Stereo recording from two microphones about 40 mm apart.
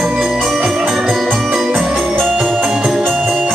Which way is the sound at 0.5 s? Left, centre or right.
Centre.